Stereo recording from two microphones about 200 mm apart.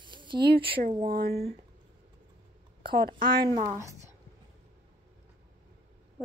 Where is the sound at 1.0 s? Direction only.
50° right (ahead or behind).